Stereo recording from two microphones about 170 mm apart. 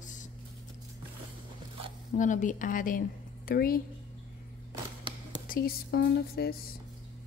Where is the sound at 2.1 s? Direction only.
50° left (ahead or behind).